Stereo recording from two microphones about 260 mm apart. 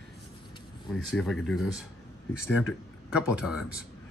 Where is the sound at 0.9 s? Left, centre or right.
Centre.